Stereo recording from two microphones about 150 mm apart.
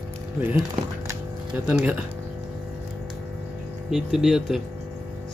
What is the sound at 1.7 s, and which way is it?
Speech, 5° right (ahead or behind).